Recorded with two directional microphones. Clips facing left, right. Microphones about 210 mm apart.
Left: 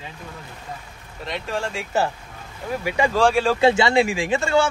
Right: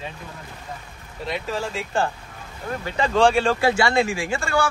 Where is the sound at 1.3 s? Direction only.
Centre (ahead or behind).